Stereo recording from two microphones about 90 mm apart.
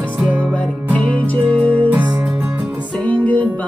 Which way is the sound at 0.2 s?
15° right (ahead or behind).